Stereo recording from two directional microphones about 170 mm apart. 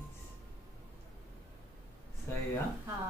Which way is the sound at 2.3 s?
15° left (ahead or behind).